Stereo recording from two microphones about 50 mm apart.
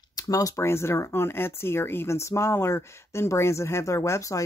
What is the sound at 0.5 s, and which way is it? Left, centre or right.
Speech, left.